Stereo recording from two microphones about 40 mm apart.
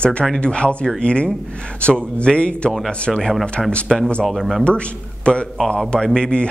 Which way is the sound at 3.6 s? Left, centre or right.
Centre.